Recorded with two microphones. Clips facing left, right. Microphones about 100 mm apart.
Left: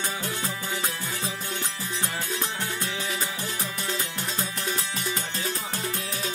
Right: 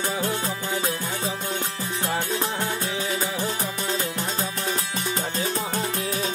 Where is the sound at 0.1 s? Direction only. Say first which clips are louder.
Right 5 dB; 35° right (ahead or behind).